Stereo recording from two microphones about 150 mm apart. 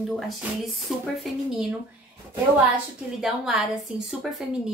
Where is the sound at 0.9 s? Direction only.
Centre (ahead or behind).